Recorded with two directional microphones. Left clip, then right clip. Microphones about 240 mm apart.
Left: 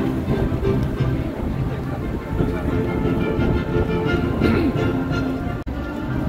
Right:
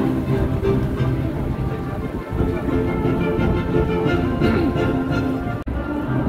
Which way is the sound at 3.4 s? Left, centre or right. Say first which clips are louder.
Right 1 dB; right.